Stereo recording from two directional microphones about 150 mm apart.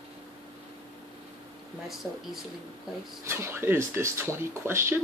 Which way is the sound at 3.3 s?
15° right (ahead or behind).